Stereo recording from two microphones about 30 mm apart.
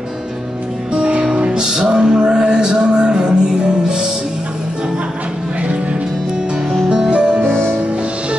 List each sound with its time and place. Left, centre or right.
0.9 s music: right
1.5 s music: right
2.1 s music: right
7.1 s music: right